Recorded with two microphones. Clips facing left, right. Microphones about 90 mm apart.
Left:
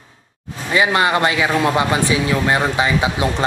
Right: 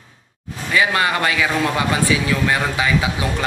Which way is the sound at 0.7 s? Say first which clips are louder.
Left 2 dB; 25° left (ahead or behind).